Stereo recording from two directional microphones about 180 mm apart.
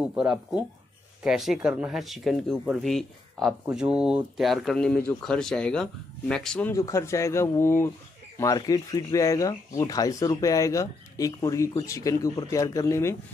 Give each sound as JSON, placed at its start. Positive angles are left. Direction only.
{"t": 0.0, "sound": "speech", "side_deg": -5}
{"t": 6.7, "sound": "speech", "side_deg": 15}